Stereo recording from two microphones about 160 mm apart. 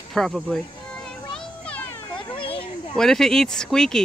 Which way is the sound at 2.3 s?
35° left (ahead or behind).